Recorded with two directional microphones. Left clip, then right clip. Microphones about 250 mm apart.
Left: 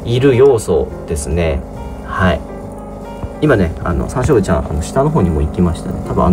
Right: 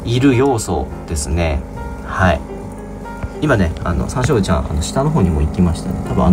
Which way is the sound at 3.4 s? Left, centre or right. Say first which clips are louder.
Left 3 dB; centre.